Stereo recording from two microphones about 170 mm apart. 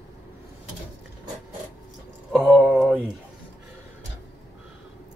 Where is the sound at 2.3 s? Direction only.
Centre (ahead or behind).